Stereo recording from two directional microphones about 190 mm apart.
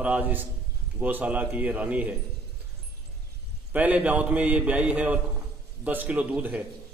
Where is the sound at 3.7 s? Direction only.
10° right (ahead or behind).